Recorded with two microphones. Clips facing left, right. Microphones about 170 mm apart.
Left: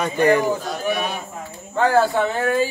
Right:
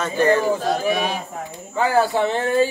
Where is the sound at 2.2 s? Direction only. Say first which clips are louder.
Right 1 dB; 30° right (ahead or behind).